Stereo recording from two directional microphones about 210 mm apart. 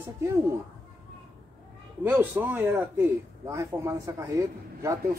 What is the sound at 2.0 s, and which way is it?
A man's voice, 10° right (ahead or behind).